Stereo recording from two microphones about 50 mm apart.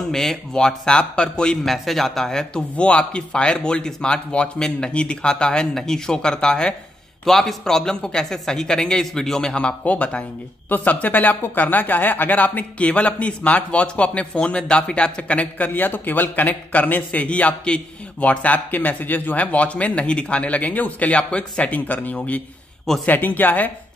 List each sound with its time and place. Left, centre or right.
0.1 s a man's voice: centre; by 23.7 s left